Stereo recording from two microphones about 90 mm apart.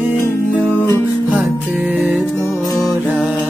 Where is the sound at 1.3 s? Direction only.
15° right (ahead or behind).